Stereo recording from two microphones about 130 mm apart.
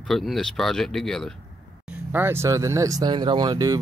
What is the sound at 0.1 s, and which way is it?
Speech, 5° left (ahead or behind).